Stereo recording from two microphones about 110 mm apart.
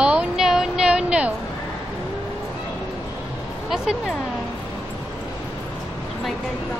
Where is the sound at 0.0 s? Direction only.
10° right (ahead or behind).